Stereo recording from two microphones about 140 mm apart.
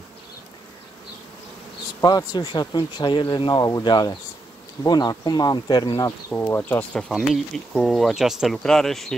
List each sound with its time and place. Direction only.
2.0 s speech: 30° left (ahead or behind)
6.3 s speech: 10° left (ahead or behind)